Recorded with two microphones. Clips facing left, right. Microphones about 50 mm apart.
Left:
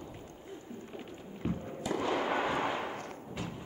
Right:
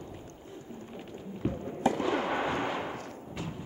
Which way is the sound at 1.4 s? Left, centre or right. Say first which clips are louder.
Right 2 dB; centre.